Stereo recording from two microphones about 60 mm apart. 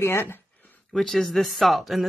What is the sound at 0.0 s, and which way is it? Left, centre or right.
Speech, left.